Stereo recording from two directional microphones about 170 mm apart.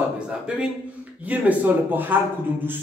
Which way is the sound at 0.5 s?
5° right (ahead or behind).